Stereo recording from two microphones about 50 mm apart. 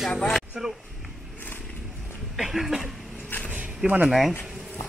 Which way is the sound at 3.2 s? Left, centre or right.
Left.